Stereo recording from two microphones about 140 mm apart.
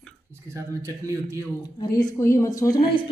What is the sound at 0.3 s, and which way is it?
Speech, 20° right (ahead or behind).